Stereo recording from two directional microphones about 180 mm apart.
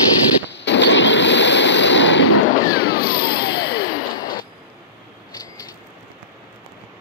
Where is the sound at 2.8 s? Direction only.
60° left (ahead or behind).